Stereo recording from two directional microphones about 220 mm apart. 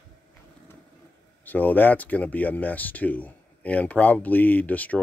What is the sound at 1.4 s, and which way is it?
Speech, 10° left (ahead or behind).